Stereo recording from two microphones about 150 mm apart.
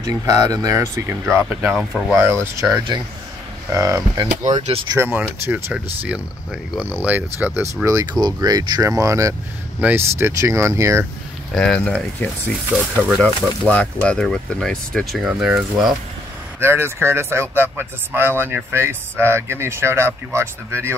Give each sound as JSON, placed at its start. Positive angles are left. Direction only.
{"t": 0.0, "sound": "speech", "side_deg": -25}
{"t": 2.1, "sound": "speech", "side_deg": -15}
{"t": 3.7, "sound": "speech", "side_deg": -20}
{"t": 7.0, "sound": "speech", "side_deg": -10}
{"t": 11.5, "sound": "speech", "side_deg": 5}
{"t": 13.7, "sound": "speech", "side_deg": 10}
{"t": 16.5, "sound": "speech", "side_deg": -15}